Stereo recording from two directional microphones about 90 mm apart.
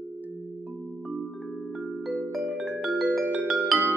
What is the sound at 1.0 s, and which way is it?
Music, 5° right (ahead or behind).